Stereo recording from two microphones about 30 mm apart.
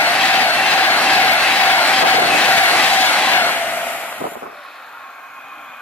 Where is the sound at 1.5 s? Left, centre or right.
Left.